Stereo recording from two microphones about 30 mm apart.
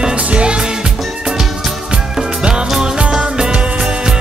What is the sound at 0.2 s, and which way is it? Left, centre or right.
Music, right.